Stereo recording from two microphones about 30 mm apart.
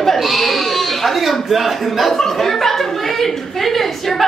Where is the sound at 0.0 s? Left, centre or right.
Centre.